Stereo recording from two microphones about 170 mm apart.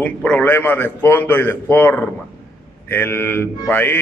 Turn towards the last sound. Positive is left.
turn(degrees=10)  # may be behind; listen again after turning